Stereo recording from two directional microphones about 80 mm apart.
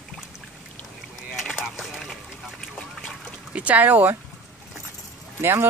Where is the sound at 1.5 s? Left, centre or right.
Centre.